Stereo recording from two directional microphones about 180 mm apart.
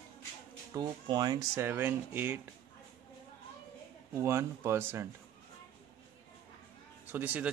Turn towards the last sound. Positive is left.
turn(degrees=-10)  # may be behind; listen again after turning